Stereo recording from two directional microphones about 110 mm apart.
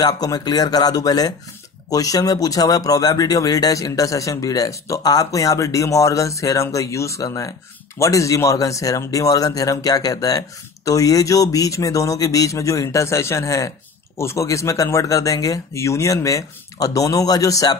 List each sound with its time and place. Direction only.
0.0 s a man's voice: 35° left (ahead or behind)